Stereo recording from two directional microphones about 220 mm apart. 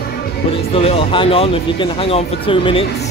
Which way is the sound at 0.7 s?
25° left (ahead or behind).